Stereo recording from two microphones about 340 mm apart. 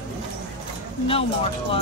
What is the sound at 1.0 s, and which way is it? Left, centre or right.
Speech, centre.